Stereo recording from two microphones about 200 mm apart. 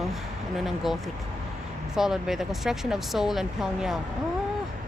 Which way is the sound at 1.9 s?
Centre (ahead or behind).